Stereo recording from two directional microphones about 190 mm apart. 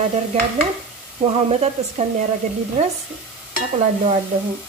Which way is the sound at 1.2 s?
30° right (ahead or behind).